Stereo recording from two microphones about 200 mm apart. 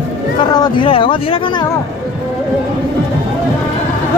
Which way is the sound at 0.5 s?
20° left (ahead or behind).